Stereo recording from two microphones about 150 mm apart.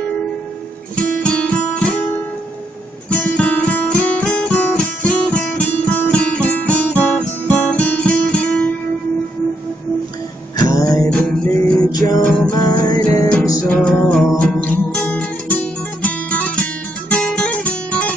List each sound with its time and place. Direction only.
1.2 s guitar: 5° left (ahead or behind)
3.1 s guitar: 10° left (ahead or behind)
10.6 s music: 25° left (ahead or behind)
11.1 s music: 10° left (ahead or behind)
12.5 s music: 25° left (ahead or behind)
13.7 s music: 5° left (ahead or behind)
17.1 s guitar: 5° left (ahead or behind)